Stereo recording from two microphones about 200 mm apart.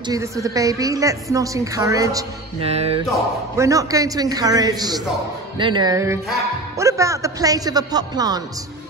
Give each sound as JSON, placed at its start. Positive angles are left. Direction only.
{"t": 0.1, "sound": "a woman's voice", "side_deg": -15}
{"t": 2.6, "sound": "speech", "side_deg": -30}
{"t": 3.5, "sound": "a woman's voice", "side_deg": -15}